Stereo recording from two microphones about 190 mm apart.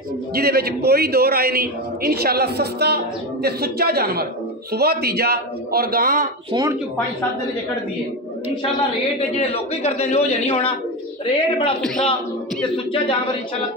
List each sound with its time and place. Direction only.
0.3 s a man's voice: 55° right (ahead or behind)
6.5 s speech: 20° right (ahead or behind)
9.4 s a man's voice: 30° left (ahead or behind)